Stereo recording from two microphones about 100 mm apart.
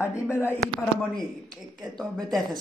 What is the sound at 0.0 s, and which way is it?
Speech, 25° left (ahead or behind).